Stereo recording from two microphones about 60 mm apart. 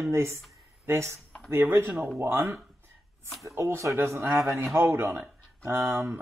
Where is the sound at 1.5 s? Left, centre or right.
Right.